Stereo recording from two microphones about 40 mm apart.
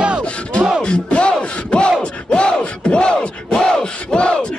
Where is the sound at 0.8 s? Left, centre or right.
Left.